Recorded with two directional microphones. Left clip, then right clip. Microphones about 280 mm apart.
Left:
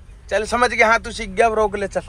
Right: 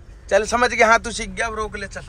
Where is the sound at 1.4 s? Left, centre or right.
Centre.